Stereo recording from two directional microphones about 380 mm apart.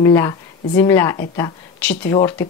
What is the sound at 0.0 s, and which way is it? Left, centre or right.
Speech, centre.